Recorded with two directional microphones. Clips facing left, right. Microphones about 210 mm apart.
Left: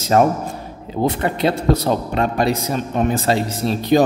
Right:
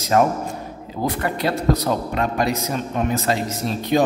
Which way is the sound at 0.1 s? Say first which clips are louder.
Left 2 dB; 30° left (ahead or behind).